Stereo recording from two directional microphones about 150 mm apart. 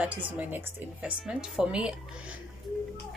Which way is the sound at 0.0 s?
10° right (ahead or behind).